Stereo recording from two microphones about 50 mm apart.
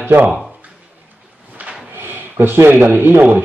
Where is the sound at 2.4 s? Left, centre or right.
Right.